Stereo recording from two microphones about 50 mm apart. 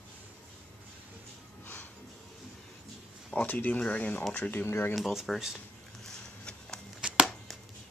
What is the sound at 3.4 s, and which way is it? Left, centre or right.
Speech, left.